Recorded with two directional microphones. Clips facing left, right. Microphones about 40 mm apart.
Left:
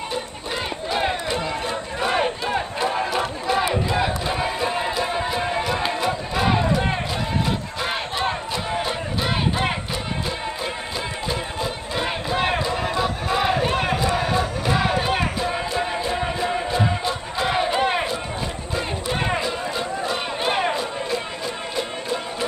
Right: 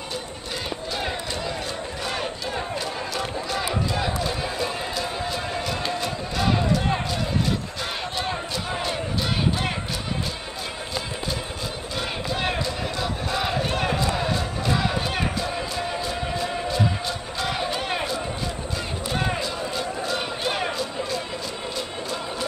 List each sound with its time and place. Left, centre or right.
0.9 s crowd: left
12.0 s battle cry: left
15.7 s music: left
19.1 s a sound: left